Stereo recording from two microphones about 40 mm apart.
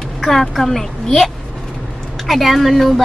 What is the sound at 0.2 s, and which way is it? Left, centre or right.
A woman's voice, centre.